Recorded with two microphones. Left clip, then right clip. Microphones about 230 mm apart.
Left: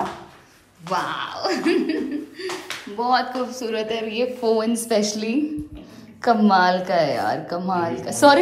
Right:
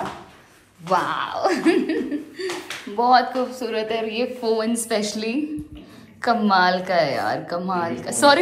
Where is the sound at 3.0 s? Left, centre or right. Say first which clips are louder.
Right 4 dB; centre.